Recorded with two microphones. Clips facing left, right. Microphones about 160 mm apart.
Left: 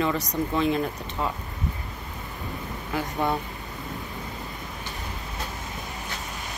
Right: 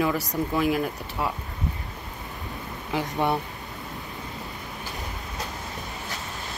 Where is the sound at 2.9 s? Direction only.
20° right (ahead or behind).